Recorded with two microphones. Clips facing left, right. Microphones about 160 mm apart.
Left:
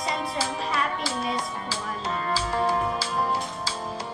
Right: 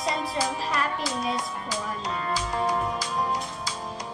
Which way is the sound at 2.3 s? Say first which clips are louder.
Left 2 dB; 30° left (ahead or behind).